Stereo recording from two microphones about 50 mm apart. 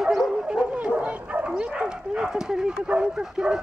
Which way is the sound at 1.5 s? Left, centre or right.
Centre.